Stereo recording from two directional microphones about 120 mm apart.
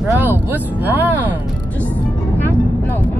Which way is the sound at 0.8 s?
15° right (ahead or behind).